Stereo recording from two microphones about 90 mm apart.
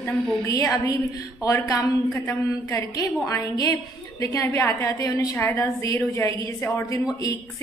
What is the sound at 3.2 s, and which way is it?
A woman's voice, 40° left (ahead or behind).